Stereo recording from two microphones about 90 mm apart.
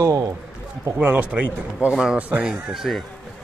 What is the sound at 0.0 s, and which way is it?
Speech, 40° right (ahead or behind).